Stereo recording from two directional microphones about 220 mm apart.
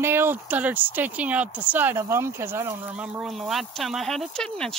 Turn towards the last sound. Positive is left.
turn(degrees=5)  # may be behind; listen again after turning